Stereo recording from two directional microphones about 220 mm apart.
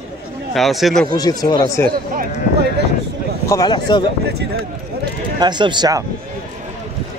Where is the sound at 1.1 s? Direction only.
15° left (ahead or behind).